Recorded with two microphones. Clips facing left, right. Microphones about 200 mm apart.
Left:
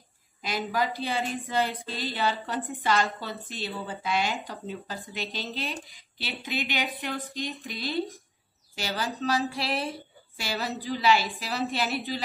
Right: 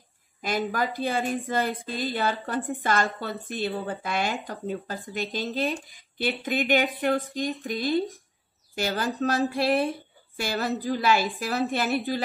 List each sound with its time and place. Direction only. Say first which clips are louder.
0.4 s a woman's voice: right 2 dB; 50° right (ahead or behind)